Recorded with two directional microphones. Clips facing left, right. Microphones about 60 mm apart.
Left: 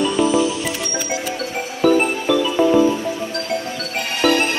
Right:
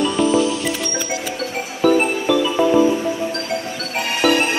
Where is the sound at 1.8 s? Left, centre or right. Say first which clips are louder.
Even; centre.